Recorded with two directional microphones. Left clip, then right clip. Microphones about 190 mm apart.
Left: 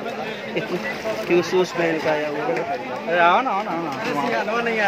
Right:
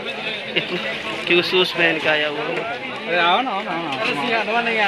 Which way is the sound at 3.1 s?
50° right (ahead or behind).